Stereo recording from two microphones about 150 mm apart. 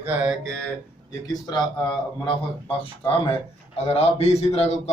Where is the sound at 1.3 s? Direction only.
30° left (ahead or behind); by 4.9 s 45° left (ahead or behind).